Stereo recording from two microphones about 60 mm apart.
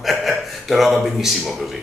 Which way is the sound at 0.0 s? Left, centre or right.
Centre.